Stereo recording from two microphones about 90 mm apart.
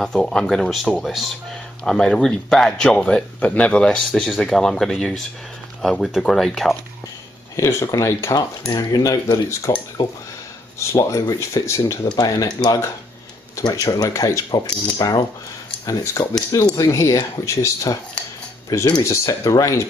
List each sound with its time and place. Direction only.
0.0 s speech: 5° left (ahead or behind)
7.5 s speech: 35° left (ahead or behind)
10.8 s speech: 35° left (ahead or behind)
12.2 s speech: 45° left (ahead or behind)
13.8 s speech: 35° left (ahead or behind)